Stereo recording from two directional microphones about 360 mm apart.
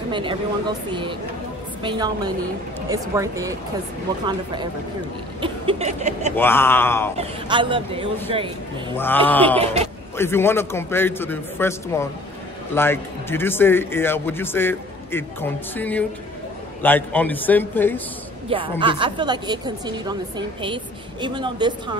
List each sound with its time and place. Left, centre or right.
0.1 s speech: centre
1.8 s a woman's voice: centre
5.4 s a woman's voice: centre
6.3 s a man's voice: centre
7.2 s a woman's voice: centre
8.9 s a man's voice: centre
18.5 s a woman's voice: centre